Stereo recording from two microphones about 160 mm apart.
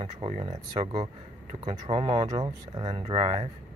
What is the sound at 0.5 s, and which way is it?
Speech, 35° right (ahead or behind).